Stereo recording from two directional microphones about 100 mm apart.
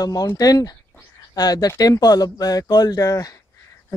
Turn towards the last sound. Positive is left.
turn(degrees=35)  # may be behind; listen again after turning